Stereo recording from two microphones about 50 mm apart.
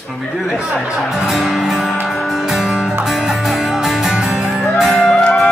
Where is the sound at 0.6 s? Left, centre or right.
Right.